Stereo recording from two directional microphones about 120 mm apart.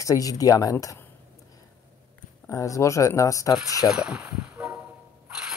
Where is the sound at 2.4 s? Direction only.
30° left (ahead or behind).